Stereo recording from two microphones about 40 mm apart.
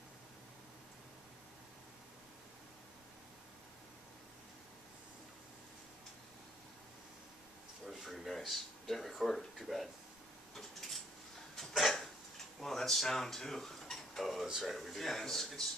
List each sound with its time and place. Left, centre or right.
7.9 s a sound: centre
9.7 s speech: centre
10.5 s a sound: centre
11.5 s cough: centre
12.5 s tick-tock: centre
14.5 s speech: centre